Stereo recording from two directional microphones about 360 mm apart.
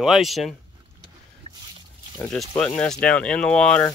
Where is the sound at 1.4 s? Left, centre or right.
Centre.